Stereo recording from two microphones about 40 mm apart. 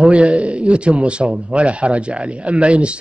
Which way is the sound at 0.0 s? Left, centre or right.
Right.